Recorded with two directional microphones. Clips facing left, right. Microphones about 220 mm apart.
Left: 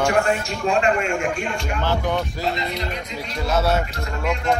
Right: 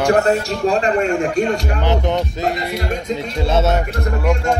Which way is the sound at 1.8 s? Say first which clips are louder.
Right 1 dB; 20° right (ahead or behind).